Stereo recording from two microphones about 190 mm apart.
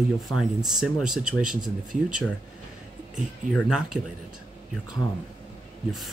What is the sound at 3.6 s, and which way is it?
Speech, centre (ahead or behind).